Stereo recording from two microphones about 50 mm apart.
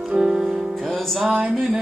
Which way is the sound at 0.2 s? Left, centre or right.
Centre.